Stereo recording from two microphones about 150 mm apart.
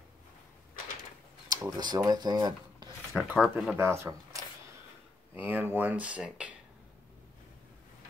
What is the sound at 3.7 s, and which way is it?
Speech, 15° right (ahead or behind).